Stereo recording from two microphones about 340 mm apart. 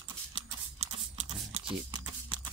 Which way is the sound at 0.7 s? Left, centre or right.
Centre.